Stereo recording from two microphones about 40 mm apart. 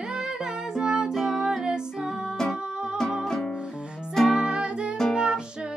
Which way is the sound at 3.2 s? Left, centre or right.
Centre.